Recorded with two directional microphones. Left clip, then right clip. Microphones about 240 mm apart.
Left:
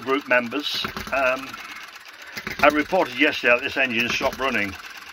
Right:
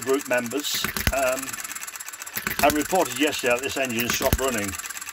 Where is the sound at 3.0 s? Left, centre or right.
Centre.